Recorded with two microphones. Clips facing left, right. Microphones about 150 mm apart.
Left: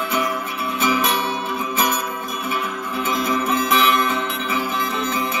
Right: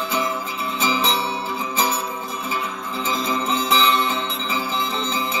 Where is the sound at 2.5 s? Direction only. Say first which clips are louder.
Left 3 dB; 25° right (ahead or behind).